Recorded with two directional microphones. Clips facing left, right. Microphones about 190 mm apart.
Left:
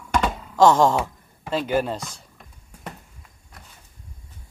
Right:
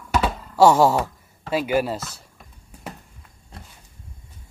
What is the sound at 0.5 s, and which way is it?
Speech, 10° right (ahead or behind).